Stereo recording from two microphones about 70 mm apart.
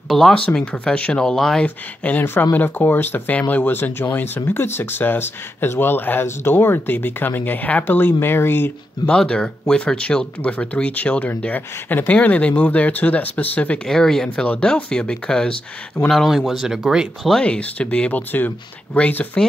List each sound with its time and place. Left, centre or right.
0.1 s speech: centre
2.0 s speech: centre
9.0 s speech: centre
13.8 s speech: centre
16.1 s speech: centre
17.4 s speech: centre